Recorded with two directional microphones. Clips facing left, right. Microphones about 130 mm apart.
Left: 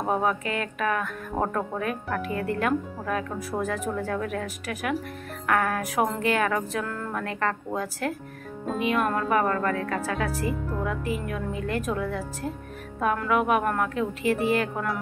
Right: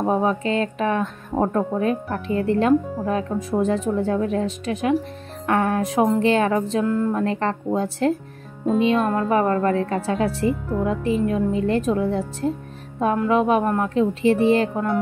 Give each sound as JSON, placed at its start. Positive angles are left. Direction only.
{"t": 0.0, "sound": "speech", "side_deg": -25}